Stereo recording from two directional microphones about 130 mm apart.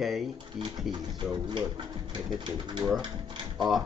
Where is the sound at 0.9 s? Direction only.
30° right (ahead or behind).